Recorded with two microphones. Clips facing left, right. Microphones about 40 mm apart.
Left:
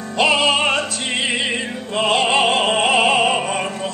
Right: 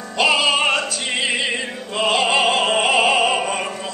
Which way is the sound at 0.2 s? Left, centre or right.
Left.